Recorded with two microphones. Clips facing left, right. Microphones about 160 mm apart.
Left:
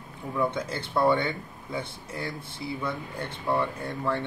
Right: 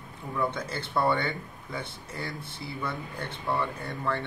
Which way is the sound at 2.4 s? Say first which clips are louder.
Left 5 dB; 60° right (ahead or behind).